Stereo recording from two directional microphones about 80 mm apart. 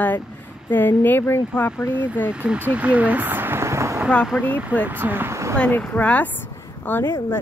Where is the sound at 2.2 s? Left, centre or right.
Centre; by 4.0 s right.